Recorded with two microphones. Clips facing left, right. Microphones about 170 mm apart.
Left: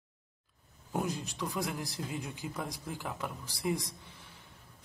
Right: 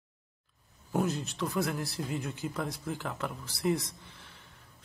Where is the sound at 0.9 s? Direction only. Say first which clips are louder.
Right 4 dB; 15° left (ahead or behind).